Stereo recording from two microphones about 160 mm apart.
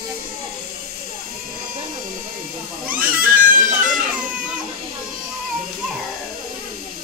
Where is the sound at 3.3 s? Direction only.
55° right (ahead or behind).